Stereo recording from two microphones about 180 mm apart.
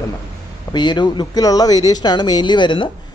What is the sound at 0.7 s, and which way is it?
Speech, 25° left (ahead or behind).